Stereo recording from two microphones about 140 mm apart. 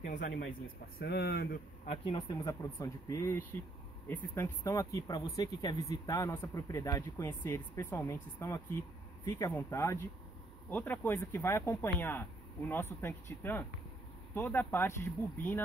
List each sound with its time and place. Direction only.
0.0 s a man's voice: 70° left (ahead or behind)
1.9 s speech: 40° left (ahead or behind)
2.4 s speech: 25° left (ahead or behind)